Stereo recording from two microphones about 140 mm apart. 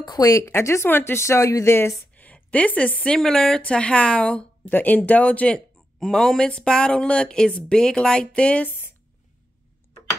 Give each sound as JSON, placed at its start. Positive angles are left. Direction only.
{"t": 0.0, "sound": "speech", "side_deg": 25}